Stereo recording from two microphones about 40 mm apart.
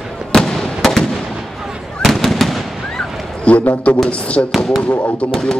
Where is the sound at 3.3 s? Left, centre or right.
Left.